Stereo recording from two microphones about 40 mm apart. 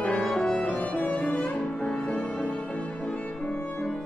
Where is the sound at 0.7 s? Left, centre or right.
Left.